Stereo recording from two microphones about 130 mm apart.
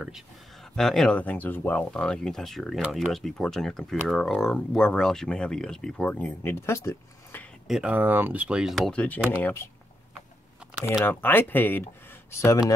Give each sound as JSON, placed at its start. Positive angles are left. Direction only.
{"t": 0.7, "sound": "speech", "side_deg": 5}
{"t": 7.6, "sound": "speech", "side_deg": -5}
{"t": 11.1, "sound": "speech", "side_deg": 15}